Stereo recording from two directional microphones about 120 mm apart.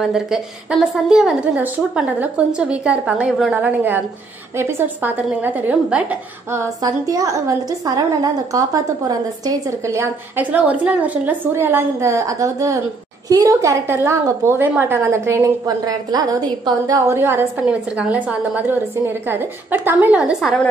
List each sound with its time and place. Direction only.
0.0 s a woman's voice: 5° right (ahead or behind)
4.6 s a woman's voice: 20° right (ahead or behind)
6.5 s a woman's voice: 25° right (ahead or behind)
17.6 s a woman's voice: 10° right (ahead or behind)
20.3 s a woman's voice: 5° left (ahead or behind)